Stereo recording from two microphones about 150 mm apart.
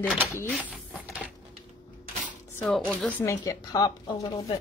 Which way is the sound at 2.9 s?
10° left (ahead or behind).